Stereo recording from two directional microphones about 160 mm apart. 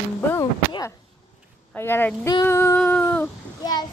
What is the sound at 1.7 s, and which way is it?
A woman's voice, 15° left (ahead or behind).